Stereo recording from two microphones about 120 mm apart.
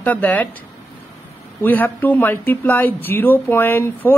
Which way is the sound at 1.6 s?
15° left (ahead or behind).